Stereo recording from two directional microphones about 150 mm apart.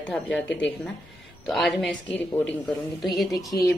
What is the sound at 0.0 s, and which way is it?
A woman's voice, 5° left (ahead or behind).